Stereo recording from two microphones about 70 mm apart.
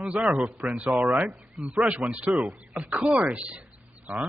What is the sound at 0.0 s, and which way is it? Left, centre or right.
A man's voice, centre.